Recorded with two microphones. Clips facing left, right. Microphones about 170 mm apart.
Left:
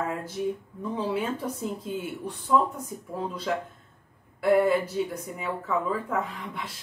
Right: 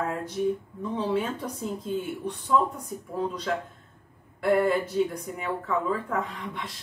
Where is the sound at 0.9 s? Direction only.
5° left (ahead or behind).